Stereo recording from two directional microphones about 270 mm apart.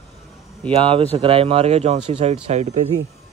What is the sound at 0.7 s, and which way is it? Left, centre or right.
Speech, centre.